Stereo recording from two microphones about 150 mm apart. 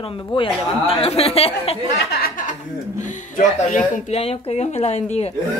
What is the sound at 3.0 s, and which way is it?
Speech, 55° left (ahead or behind).